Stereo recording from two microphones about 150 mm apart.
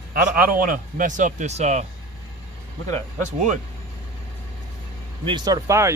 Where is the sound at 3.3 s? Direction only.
55° right (ahead or behind).